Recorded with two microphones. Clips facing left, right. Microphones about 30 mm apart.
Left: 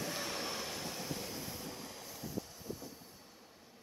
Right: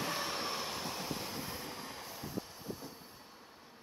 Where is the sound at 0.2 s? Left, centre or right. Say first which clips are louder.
Right 2 dB; centre.